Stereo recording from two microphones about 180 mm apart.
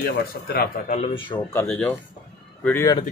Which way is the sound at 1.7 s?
5° left (ahead or behind).